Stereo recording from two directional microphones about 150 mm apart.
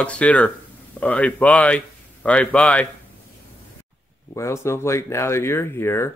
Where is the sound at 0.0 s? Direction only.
10° left (ahead or behind).